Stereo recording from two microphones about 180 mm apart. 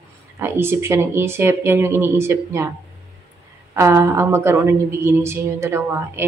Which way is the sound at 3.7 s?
15° right (ahead or behind).